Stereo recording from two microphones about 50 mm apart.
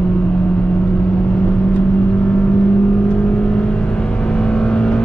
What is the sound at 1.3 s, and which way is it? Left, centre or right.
Vehicle, left.